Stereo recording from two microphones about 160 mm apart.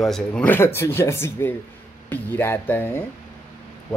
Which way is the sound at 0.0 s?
5° left (ahead or behind).